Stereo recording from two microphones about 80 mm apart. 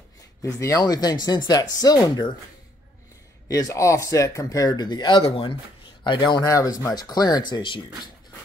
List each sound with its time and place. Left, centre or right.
0.6 s speech: left
3.4 s speech: left
6.0 s a man's voice: left
6.4 s speech: left